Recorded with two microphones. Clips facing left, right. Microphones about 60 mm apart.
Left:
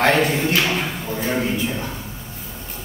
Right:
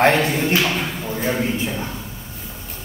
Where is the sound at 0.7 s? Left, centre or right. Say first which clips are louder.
Even; centre.